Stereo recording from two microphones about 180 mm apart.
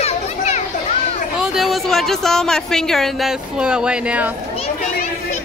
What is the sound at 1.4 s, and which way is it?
Speech, centre (ahead or behind).